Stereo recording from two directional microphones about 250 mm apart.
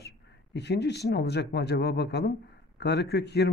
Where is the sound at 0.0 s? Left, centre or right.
Left.